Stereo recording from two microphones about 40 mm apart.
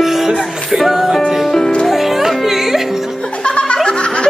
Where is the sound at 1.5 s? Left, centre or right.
Centre.